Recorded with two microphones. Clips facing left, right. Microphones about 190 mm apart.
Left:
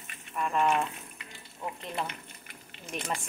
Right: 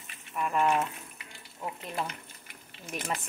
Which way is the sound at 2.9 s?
Centre (ahead or behind).